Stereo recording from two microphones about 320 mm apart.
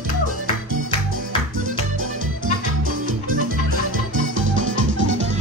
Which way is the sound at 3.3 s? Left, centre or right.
Right.